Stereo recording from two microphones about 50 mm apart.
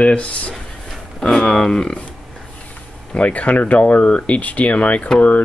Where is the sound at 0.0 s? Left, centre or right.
Left.